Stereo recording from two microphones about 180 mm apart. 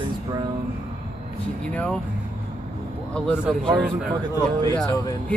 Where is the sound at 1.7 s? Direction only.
5° left (ahead or behind).